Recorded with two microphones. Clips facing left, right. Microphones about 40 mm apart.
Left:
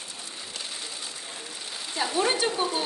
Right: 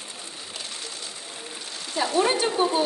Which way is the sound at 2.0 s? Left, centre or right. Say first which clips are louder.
Right 3 dB; centre.